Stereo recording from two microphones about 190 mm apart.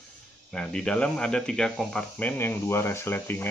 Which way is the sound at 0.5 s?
5° left (ahead or behind).